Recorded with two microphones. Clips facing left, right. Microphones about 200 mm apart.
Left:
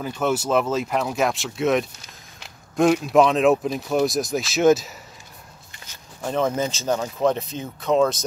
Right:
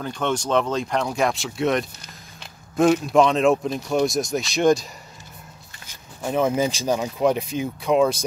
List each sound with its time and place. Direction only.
0.0 s speech: 5° left (ahead or behind)
6.2 s speech: 10° right (ahead or behind)